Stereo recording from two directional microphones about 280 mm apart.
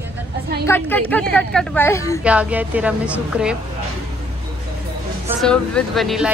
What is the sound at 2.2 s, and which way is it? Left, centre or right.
A woman's voice, centre.